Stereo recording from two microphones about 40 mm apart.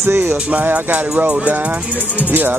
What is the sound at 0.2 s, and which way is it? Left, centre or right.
Music, right.